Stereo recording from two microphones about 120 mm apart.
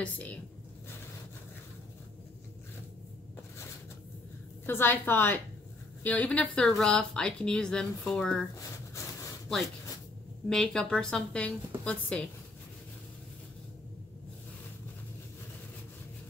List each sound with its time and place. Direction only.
0.0 s a woman's voice: 10° left (ahead or behind)
4.6 s a woman's voice: 20° left (ahead or behind)
10.5 s a woman's voice: 5° left (ahead or behind)